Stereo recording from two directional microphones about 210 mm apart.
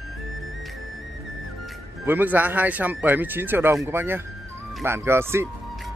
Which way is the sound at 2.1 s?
10° right (ahead or behind).